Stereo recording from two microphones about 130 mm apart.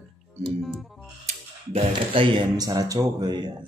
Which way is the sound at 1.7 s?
45° right (ahead or behind).